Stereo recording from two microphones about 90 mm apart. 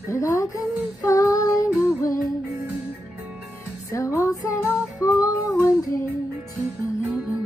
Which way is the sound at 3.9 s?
35° left (ahead or behind).